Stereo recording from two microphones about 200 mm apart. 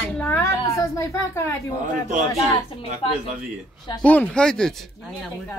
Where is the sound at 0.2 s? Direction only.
15° left (ahead or behind).